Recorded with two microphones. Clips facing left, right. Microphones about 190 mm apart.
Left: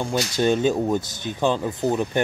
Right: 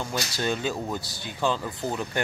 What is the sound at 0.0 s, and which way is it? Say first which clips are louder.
Speech: left 7 dB; 20° left (ahead or behind).